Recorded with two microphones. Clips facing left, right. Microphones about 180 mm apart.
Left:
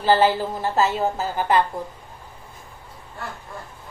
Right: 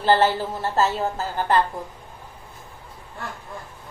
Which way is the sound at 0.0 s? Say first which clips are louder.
Left 1 dB; 10° left (ahead or behind).